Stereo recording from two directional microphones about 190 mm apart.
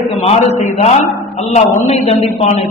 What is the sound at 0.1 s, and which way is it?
A man's voice, 35° left (ahead or behind).